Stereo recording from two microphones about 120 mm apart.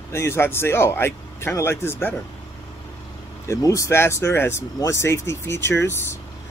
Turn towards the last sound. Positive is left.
turn(degrees=20)  # may be behind; listen again after turning